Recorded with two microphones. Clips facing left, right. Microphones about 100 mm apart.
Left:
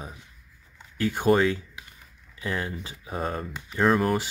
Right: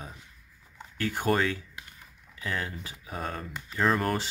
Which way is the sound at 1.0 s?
20° left (ahead or behind).